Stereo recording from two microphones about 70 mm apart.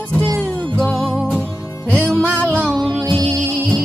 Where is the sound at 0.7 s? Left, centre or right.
Centre.